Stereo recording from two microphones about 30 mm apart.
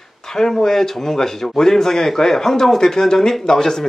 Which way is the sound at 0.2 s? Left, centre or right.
Centre.